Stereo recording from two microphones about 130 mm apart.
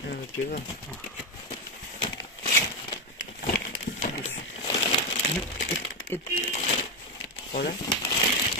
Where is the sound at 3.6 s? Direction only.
65° left (ahead or behind).